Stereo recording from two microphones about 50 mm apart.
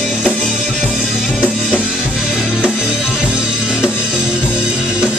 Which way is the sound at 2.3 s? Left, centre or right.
Centre.